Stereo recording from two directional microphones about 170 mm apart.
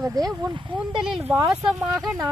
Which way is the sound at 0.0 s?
20° right (ahead or behind).